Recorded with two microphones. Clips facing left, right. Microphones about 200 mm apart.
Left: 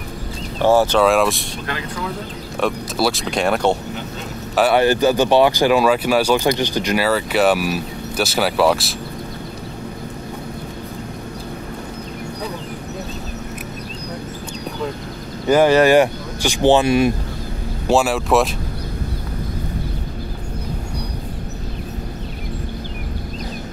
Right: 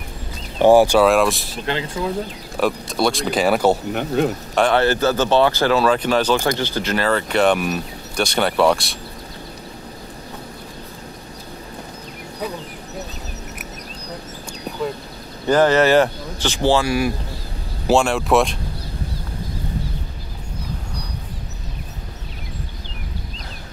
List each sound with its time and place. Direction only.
0.6 s speech: 15° right (ahead or behind)
1.0 s speech: centre (ahead or behind)
1.7 s speech: 25° right (ahead or behind)
2.6 s speech: centre (ahead or behind)
4.6 s speech: 10° left (ahead or behind)
15.4 s speech: 10° left (ahead or behind)
17.8 s speech: centre (ahead or behind)